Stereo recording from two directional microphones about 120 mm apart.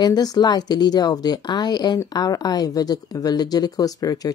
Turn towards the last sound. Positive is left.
turn(degrees=30)  # may be behind; listen again after turning